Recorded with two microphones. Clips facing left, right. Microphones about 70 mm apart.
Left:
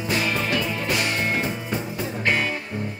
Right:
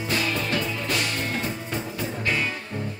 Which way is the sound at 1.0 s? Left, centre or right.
Left.